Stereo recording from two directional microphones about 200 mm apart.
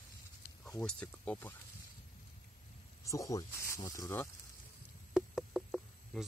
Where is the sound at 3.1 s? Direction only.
15° left (ahead or behind).